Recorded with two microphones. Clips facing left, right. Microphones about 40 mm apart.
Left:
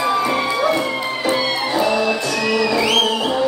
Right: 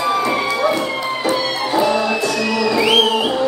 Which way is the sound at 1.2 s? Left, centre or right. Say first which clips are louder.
Even; centre.